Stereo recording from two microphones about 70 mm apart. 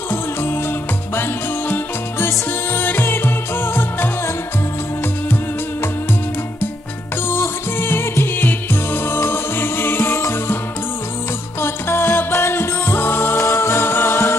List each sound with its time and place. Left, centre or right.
0.1 s music: left
7.2 s music: left
11.6 s music: left
13.4 s music: left